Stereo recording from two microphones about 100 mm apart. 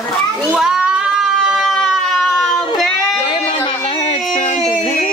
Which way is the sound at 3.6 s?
55° left (ahead or behind).